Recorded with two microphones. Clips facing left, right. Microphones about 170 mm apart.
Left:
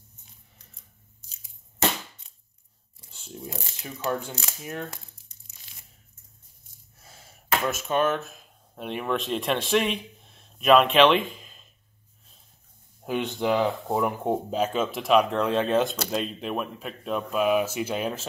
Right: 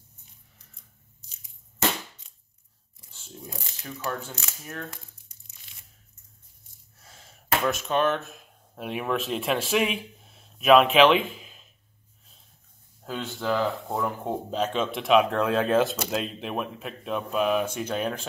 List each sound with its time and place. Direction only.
3.1 s speech: 20° left (ahead or behind)
7.1 s speech: 5° left (ahead or behind)
13.0 s speech: 15° left (ahead or behind)